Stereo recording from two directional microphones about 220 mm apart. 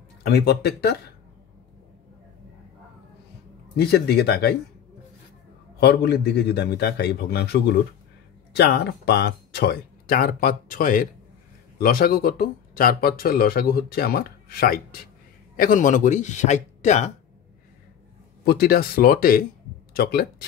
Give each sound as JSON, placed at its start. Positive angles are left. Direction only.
{"t": 0.2, "sound": "speech", "side_deg": 45}
{"t": 3.7, "sound": "speech", "side_deg": 45}
{"t": 5.8, "sound": "speech", "side_deg": 45}
{"t": 18.4, "sound": "speech", "side_deg": 45}